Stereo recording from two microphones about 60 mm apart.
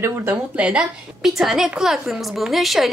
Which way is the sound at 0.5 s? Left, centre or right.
Centre.